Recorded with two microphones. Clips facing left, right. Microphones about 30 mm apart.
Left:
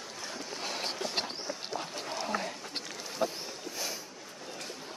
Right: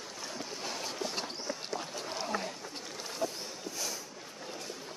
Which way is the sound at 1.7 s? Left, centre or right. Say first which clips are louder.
Left 1 dB; centre.